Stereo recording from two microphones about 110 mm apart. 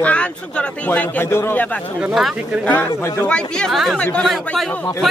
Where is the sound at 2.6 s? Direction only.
15° left (ahead or behind).